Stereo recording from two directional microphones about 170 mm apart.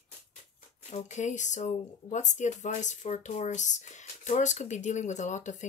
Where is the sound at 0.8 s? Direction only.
45° left (ahead or behind).